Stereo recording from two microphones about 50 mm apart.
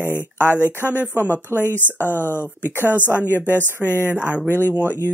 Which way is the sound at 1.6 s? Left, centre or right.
Left.